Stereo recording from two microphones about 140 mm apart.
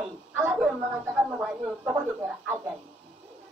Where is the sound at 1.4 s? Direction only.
5° right (ahead or behind).